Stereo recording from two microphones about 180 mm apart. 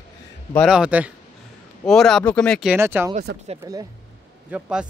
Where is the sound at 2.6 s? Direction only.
10° right (ahead or behind).